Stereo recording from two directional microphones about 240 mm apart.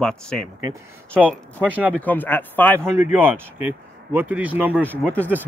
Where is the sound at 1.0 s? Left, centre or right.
Centre.